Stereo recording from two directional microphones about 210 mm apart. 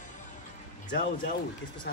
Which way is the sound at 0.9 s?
55° left (ahead or behind).